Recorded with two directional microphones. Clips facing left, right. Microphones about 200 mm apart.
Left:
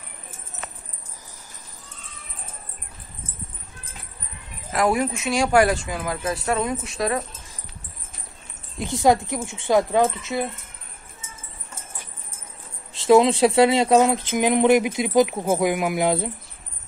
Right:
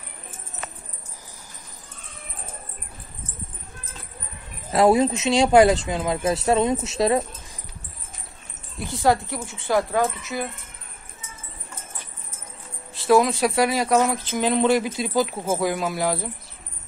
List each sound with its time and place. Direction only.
4.7 s speech: 25° right (ahead or behind)
8.7 s speech: 20° left (ahead or behind)
12.9 s speech: 20° left (ahead or behind)